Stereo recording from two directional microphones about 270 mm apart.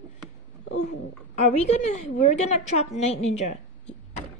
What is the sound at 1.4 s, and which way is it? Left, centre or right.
A woman's voice, left.